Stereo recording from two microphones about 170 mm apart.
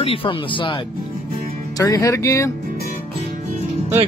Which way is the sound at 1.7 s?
20° left (ahead or behind).